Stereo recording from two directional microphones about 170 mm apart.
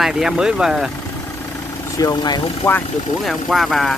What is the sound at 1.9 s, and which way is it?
Speech, 20° left (ahead or behind).